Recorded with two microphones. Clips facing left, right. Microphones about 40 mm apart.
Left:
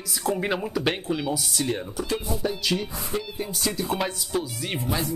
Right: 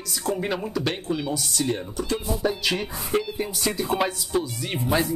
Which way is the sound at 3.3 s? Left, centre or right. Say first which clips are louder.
Right 2 dB; centre.